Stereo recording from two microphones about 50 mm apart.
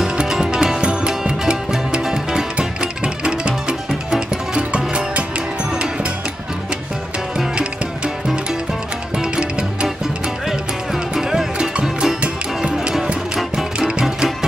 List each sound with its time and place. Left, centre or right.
0.2 s music: centre
7.3 s music: centre
9.2 s music: centre
10.9 s music: centre